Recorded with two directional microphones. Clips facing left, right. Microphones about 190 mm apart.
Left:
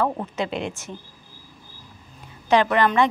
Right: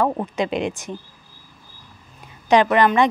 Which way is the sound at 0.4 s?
15° right (ahead or behind).